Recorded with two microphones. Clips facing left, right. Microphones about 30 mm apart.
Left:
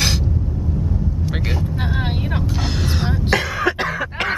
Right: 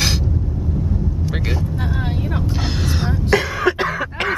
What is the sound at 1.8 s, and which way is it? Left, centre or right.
Vehicle, left.